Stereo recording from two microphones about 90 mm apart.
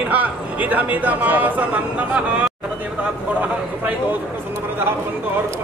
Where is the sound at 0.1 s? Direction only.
20° right (ahead or behind).